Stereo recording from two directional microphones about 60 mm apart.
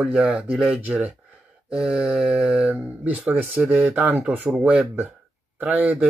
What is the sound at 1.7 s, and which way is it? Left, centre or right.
Mantra, centre.